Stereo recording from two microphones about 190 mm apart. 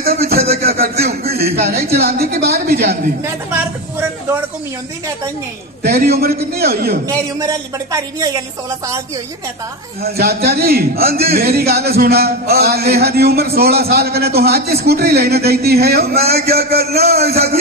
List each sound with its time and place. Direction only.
0.2 s a sound: 55° right (ahead or behind)
1.4 s a woman's voice: 55° right (ahead or behind)
5.8 s a woman's voice: 55° right (ahead or behind)
7.1 s speech: 15° right (ahead or behind)
10.0 s a man's voice: 55° right (ahead or behind)